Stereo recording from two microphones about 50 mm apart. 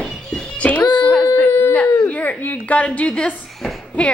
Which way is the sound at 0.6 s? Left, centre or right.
Left.